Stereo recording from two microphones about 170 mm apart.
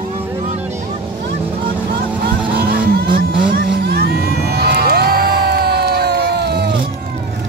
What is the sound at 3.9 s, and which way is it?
Crowd, 65° right (ahead or behind).